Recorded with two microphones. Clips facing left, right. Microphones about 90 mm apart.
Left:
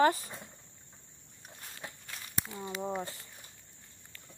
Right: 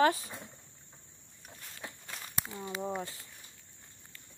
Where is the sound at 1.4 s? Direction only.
Centre (ahead or behind).